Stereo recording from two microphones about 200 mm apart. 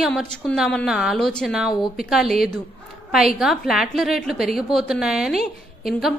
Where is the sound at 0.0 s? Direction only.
5° left (ahead or behind).